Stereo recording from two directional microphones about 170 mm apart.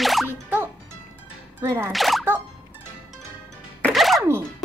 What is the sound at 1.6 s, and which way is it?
Speech, 15° right (ahead or behind).